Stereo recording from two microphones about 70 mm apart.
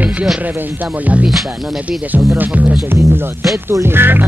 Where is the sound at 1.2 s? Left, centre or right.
Centre.